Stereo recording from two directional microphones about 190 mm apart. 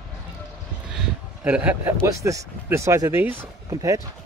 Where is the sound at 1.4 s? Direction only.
10° right (ahead or behind).